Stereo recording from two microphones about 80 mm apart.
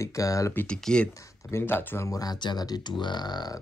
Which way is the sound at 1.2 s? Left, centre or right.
Left.